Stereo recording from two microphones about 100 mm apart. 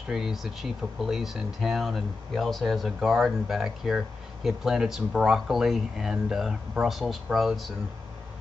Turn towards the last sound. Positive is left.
turn(degrees=0)  # may be behind; listen again after turning